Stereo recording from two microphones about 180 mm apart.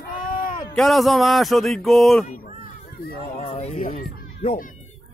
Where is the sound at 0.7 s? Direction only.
Centre (ahead or behind).